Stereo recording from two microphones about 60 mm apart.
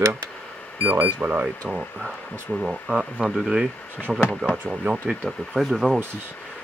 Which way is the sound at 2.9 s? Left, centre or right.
Right.